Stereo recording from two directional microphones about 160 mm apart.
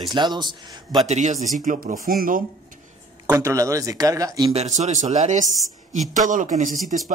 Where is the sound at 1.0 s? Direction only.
50° right (ahead or behind).